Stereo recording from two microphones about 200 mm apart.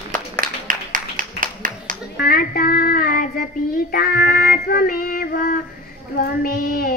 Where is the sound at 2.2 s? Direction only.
45° left (ahead or behind).